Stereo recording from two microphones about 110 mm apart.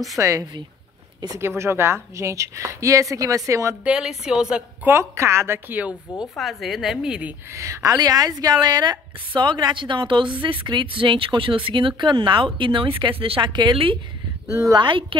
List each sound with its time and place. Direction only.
0.2 s speech: 30° right (ahead or behind)
1.6 s speech: 25° right (ahead or behind)
3.8 s a woman's voice: 5° right (ahead or behind)
4.8 s speech: 25° right (ahead or behind)
6.3 s a woman's voice: centre (ahead or behind)
7.5 s a woman's voice: 25° right (ahead or behind); by 13.9 s 50° right (ahead or behind)
14.5 s speech: 30° right (ahead or behind)
14.8 s a woman's voice: 50° right (ahead or behind)